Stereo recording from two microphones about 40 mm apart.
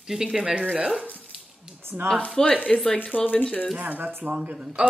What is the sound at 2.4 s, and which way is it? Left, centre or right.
Speech, left.